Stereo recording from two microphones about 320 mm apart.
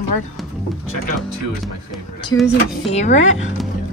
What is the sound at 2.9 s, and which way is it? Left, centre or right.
Speech, left.